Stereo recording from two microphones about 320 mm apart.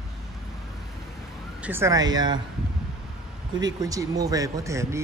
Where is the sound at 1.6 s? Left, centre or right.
Centre.